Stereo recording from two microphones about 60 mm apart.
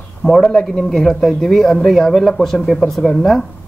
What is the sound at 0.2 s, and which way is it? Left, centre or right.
Speech, centre.